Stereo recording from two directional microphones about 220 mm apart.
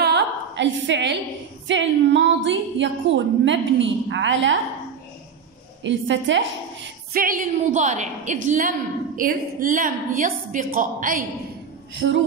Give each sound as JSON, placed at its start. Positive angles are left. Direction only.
{"t": 0.0, "sound": "a sound", "side_deg": -55}
{"t": 1.7, "sound": "a woman's voice", "side_deg": -55}
{"t": 5.9, "sound": "a woman's voice", "side_deg": -55}
{"t": 7.2, "sound": "a woman's voice", "side_deg": -40}
{"t": 11.9, "sound": "a woman's voice", "side_deg": -55}